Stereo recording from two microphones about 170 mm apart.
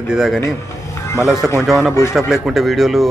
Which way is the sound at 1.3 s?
15° left (ahead or behind).